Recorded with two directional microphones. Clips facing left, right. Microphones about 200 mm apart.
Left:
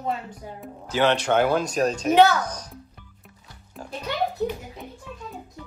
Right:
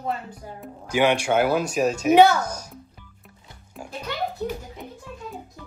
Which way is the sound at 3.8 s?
10° right (ahead or behind).